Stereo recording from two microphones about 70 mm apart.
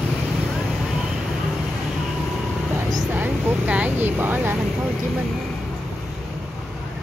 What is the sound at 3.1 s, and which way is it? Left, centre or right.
Vehicle, right.